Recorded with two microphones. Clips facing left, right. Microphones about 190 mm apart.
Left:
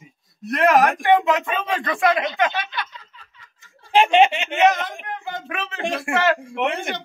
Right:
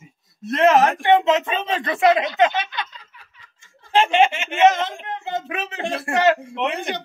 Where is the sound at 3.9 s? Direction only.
15° left (ahead or behind).